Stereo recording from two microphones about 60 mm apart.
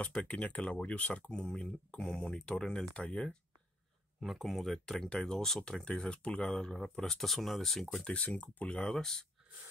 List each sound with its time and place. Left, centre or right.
0.1 s speech: centre
4.2 s speech: centre
8.1 s speech: left